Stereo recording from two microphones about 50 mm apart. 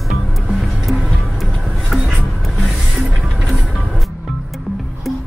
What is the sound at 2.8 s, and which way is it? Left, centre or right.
Music, centre.